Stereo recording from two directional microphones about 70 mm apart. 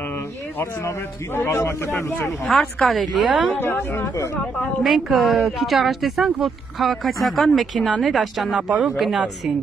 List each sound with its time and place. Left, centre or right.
0.6 s a man's voice: left
2.2 s speech: centre
3.5 s a man's voice: left
4.8 s speech: centre
8.5 s speech: centre
8.9 s speech: centre